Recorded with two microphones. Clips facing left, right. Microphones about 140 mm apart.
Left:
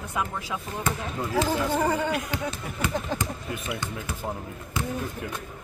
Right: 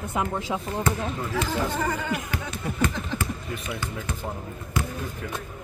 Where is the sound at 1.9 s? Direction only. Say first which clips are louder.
Left 3 dB; 20° left (ahead or behind).